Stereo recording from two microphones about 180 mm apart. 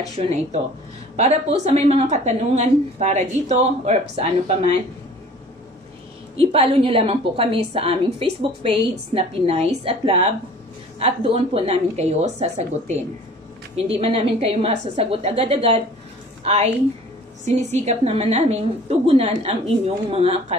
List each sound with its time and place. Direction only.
0.2 s a woman's voice: 40° right (ahead or behind)
6.3 s a woman's voice: 30° right (ahead or behind)